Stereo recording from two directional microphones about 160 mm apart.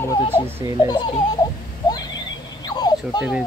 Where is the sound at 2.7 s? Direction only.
25° left (ahead or behind).